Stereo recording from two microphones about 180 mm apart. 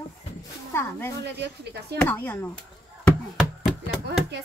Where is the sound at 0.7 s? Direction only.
15° left (ahead or behind).